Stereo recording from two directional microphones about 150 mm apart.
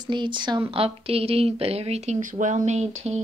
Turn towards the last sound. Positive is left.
turn(degrees=-50)  # may be behind; listen again after turning